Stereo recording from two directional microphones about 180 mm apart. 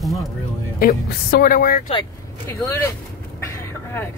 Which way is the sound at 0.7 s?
55° left (ahead or behind).